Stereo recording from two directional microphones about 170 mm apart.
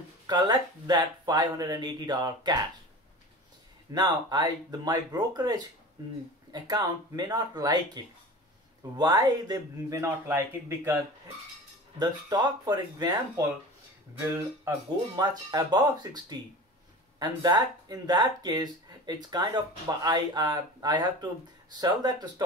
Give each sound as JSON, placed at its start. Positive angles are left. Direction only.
{"t": 0.3, "sound": "speech", "side_deg": -25}
{"t": 3.9, "sound": "speech", "side_deg": -25}
{"t": 12.0, "sound": "speech", "side_deg": -25}
{"t": 15.1, "sound": "speech", "side_deg": -25}